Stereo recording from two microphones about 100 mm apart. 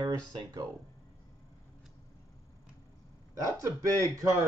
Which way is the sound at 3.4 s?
35° right (ahead or behind).